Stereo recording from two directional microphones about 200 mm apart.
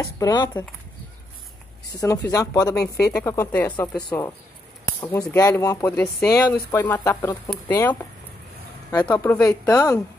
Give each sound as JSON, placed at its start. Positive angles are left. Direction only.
{"t": 0.0, "sound": "speech", "side_deg": 20}
{"t": 1.9, "sound": "speech", "side_deg": 15}
{"t": 9.1, "sound": "speech", "side_deg": 15}